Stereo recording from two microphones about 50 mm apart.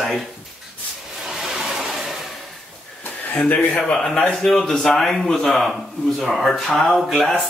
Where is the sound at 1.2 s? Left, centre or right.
Centre.